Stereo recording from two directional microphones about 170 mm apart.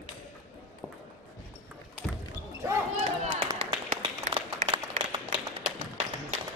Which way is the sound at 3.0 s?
40° right (ahead or behind).